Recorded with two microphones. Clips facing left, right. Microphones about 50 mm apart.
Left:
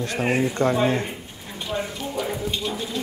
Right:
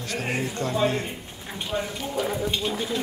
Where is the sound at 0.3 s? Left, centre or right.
Centre.